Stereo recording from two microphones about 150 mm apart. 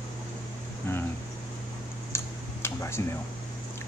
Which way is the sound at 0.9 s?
15° left (ahead or behind).